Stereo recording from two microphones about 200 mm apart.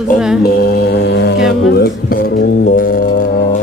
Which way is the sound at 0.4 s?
50° left (ahead or behind).